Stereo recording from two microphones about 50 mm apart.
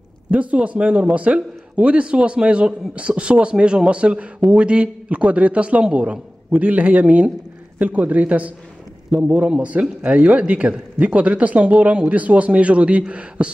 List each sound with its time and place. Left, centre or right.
0.3 s speech: right
6.5 s a man's voice: right